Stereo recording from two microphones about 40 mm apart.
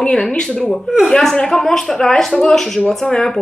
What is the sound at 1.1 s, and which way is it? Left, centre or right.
Speech, centre.